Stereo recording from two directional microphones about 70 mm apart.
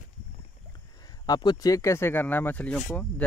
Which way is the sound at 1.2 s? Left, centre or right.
Left.